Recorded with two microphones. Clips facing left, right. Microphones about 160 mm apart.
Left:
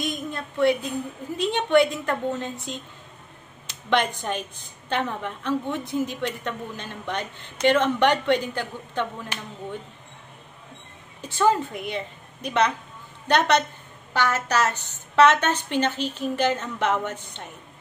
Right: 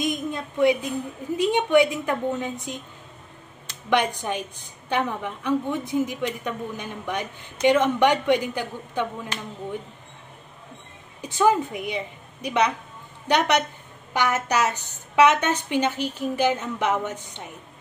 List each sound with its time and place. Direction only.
0.0 s a woman's voice: 15° right (ahead or behind)
3.9 s a woman's voice: 15° right (ahead or behind)
11.1 s a woman's voice: 15° right (ahead or behind)